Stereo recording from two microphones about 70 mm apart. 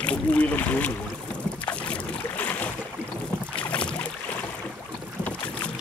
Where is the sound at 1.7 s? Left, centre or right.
Centre.